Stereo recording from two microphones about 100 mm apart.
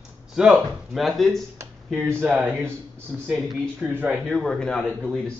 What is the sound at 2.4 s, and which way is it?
Speech, 20° right (ahead or behind).